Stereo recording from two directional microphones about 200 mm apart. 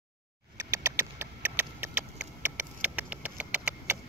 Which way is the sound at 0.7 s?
10° right (ahead or behind).